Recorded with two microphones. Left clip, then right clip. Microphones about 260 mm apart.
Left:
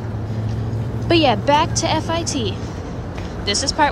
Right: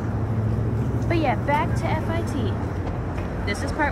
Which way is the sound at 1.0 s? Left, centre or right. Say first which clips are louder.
Left 8 dB; left.